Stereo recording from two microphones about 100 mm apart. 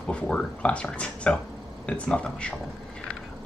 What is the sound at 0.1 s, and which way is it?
Speech, 10° left (ahead or behind).